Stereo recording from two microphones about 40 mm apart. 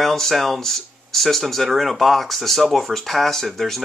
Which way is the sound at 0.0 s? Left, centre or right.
Centre.